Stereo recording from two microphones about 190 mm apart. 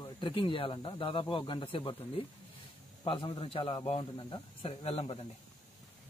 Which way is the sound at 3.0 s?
25° left (ahead or behind).